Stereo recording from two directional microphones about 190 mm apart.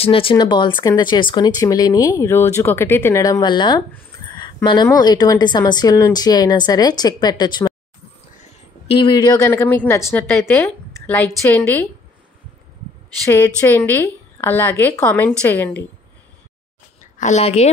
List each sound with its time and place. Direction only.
0.0 s speech: 30° left (ahead or behind)
4.3 s a sound: 25° left (ahead or behind)
5.0 s speech: 20° left (ahead or behind)
8.8 s speech: 25° left (ahead or behind)
9.5 s a woman's voice: 10° left (ahead or behind)
13.6 s a woman's voice: 10° left (ahead or behind)
17.2 s a woman's voice: 35° left (ahead or behind)